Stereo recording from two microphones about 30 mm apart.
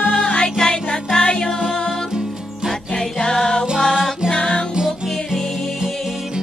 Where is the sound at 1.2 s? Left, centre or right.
Left.